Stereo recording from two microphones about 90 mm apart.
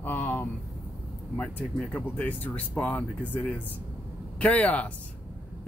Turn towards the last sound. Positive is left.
turn(degrees=15)  # may be behind; listen again after turning